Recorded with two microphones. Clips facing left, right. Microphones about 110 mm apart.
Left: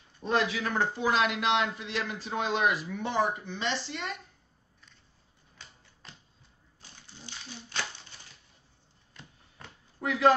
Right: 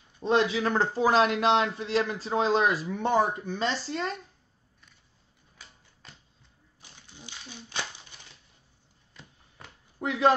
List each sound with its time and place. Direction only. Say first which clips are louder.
0.2 s a man's voice: right 4 dB; 25° right (ahead or behind)
5.6 s typewriter: even; 5° right (ahead or behind)
6.8 s a sound: right 1 dB; 15° right (ahead or behind)
9.9 s speech: even; 25° right (ahead or behind)